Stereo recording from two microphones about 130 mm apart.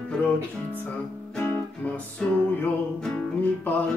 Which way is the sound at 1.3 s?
15° left (ahead or behind).